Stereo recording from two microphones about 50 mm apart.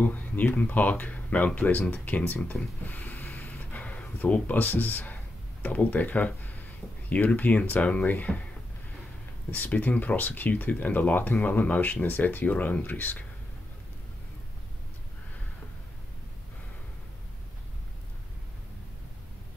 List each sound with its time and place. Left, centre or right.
0.0 s speech: left
9.5 s speech: left